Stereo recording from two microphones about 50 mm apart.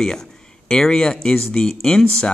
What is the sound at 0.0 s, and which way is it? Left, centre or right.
Speech, centre.